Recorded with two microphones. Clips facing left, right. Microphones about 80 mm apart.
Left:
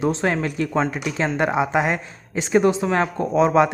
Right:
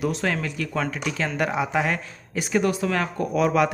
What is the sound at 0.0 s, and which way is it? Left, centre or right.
Speech, left.